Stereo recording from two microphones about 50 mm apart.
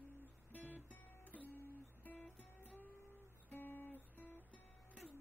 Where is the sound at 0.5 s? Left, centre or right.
Left.